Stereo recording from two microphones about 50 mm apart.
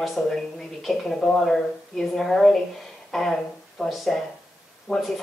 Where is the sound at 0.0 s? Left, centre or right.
Centre.